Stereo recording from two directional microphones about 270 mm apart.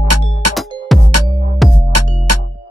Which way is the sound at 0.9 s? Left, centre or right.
Centre.